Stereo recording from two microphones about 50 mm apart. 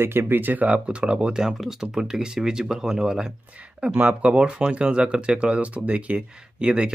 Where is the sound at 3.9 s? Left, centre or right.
Right.